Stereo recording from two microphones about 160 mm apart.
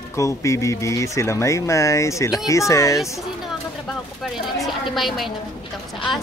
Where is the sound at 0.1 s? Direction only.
20° left (ahead or behind).